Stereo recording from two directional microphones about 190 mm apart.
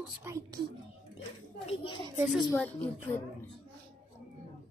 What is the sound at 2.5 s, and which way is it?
Speech, 10° left (ahead or behind).